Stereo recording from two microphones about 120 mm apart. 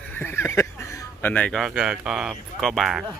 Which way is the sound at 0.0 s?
15° left (ahead or behind).